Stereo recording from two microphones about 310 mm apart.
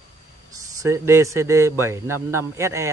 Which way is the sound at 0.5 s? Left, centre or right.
Centre.